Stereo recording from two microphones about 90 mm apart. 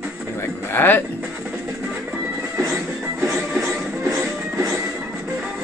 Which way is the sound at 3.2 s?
Centre (ahead or behind).